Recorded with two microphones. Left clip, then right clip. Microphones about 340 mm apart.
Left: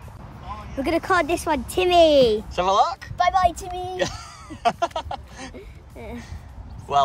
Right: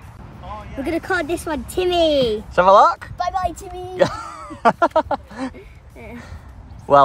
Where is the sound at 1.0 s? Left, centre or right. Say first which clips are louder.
Left 3 dB; centre.